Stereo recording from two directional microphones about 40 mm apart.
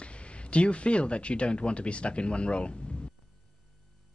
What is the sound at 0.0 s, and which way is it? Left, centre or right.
A man's voice, left.